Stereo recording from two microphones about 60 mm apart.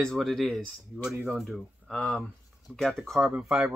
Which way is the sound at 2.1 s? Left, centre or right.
Centre.